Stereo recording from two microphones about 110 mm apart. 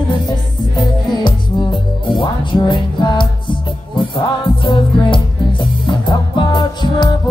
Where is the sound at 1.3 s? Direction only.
40° left (ahead or behind).